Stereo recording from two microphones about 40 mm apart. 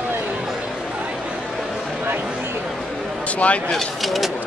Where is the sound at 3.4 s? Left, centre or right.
Left.